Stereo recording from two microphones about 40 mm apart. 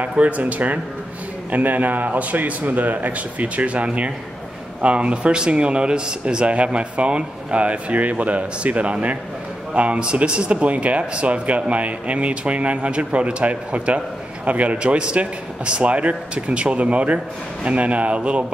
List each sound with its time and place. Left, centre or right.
0.2 s a man's voice: right